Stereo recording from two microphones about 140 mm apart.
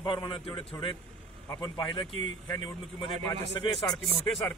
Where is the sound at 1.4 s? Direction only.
20° left (ahead or behind).